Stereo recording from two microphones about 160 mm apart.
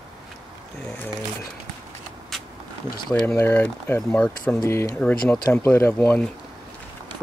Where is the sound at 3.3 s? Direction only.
15° left (ahead or behind).